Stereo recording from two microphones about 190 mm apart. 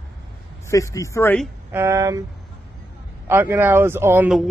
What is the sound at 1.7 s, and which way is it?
Speech, 15° right (ahead or behind).